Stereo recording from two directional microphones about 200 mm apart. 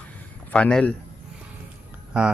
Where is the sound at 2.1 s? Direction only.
5° right (ahead or behind).